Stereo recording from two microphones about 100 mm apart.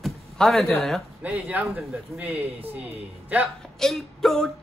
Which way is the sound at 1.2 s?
15° right (ahead or behind).